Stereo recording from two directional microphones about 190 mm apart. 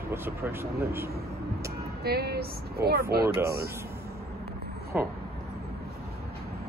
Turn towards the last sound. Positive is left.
turn(degrees=-10)  # may be behind; listen again after turning